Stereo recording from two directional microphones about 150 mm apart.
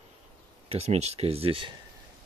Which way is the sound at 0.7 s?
45° right (ahead or behind).